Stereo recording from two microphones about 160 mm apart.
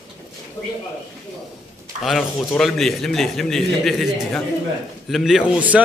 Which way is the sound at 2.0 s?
Centre (ahead or behind).